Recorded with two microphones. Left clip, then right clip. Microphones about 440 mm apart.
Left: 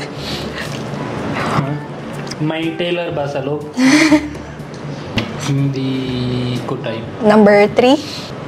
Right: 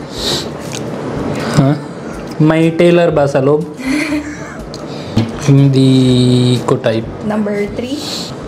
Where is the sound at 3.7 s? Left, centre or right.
Left.